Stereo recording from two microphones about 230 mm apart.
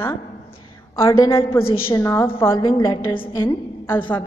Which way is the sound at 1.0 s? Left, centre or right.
Centre.